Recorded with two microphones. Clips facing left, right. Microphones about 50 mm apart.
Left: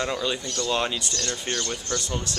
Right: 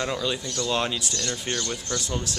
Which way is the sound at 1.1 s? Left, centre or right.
Centre.